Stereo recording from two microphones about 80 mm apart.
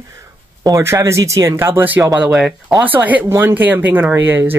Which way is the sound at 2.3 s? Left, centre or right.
Centre.